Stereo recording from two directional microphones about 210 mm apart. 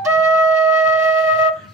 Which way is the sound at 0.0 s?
10° right (ahead or behind).